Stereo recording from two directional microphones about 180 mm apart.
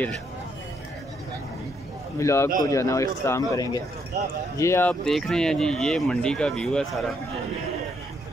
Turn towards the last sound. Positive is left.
turn(degrees=0)  # may be behind; listen again after turning